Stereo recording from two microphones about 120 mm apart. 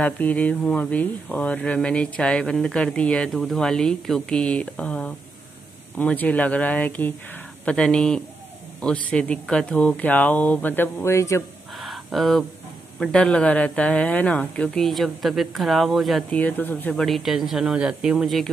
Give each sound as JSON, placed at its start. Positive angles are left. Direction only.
{"t": 0.0, "sound": "a man's voice", "side_deg": 10}
{"t": 11.8, "sound": "a sound", "side_deg": 0}
{"t": 13.0, "sound": "speech", "side_deg": 5}
{"t": 16.3, "sound": "speech", "side_deg": 10}
{"t": 16.9, "sound": "speech", "side_deg": 0}